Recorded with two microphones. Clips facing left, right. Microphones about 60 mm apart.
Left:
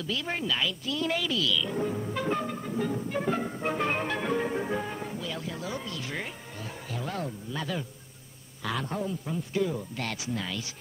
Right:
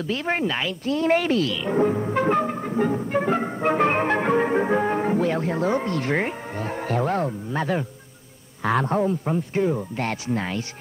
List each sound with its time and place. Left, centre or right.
0.1 s a man's voice: right